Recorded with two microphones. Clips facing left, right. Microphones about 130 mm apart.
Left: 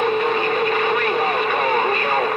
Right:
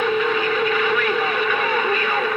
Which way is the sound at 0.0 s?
45° left (ahead or behind).